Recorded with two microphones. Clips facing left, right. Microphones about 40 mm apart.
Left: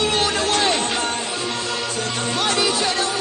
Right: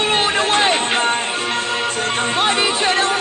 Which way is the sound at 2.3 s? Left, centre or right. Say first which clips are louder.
Right 1 dB; right.